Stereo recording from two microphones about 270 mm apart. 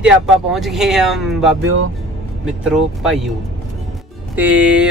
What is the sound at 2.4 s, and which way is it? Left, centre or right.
Speech, centre.